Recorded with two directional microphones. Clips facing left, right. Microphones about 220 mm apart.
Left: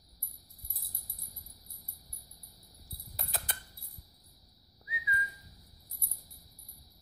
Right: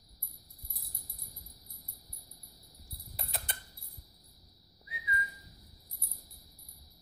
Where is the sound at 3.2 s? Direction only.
Centre (ahead or behind).